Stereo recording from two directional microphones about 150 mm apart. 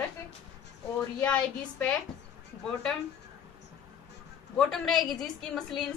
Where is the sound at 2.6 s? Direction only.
5° left (ahead or behind).